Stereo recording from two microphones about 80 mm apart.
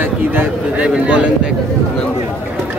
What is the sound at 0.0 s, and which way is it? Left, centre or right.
A man's voice, right.